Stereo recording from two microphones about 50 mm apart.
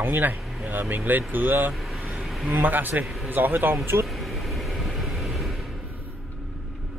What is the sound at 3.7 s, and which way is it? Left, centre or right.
Speech, right.